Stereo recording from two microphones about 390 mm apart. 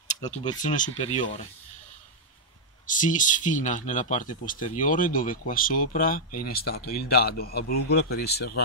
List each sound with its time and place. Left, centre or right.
0.1 s speech: centre
2.9 s speech: centre